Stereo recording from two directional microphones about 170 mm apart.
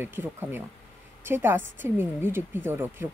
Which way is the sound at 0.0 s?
10° right (ahead or behind).